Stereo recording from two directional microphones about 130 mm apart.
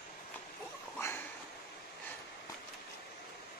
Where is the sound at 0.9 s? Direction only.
20° left (ahead or behind).